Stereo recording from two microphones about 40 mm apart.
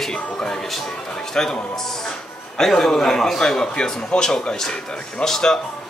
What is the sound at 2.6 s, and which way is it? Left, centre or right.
A man's voice, centre.